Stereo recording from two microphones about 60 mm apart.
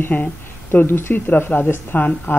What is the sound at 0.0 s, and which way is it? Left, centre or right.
Speech, left.